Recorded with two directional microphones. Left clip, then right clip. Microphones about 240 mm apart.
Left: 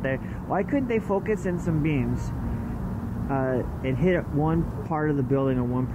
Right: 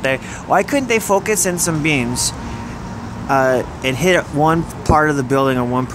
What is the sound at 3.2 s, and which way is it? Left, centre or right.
Speech, right.